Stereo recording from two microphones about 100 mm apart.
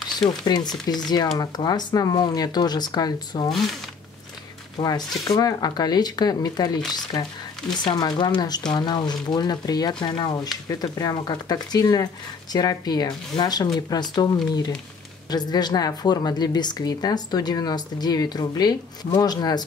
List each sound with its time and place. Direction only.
0.3 s a woman's voice: 45° left (ahead or behind)
4.7 s a woman's voice: 45° left (ahead or behind)